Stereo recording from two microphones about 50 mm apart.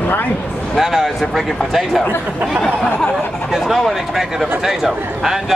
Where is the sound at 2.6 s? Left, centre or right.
Centre.